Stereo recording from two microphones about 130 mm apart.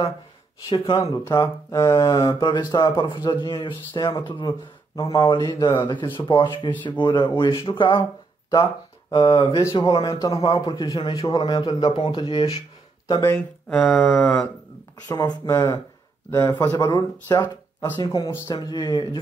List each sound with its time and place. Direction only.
0.7 s a man's voice: 35° left (ahead or behind)
0.9 s a man's voice: 25° left (ahead or behind)
9.4 s a man's voice: 25° left (ahead or behind)
13.7 s a sound: 5° left (ahead or behind)
15.0 s a man's voice: 25° left (ahead or behind)